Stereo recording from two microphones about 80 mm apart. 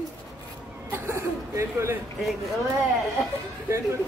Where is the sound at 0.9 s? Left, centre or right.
Right.